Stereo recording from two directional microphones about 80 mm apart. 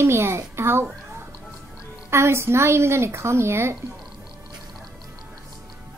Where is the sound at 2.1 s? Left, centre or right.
Right.